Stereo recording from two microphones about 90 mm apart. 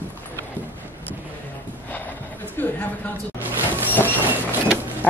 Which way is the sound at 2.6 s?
25° left (ahead or behind).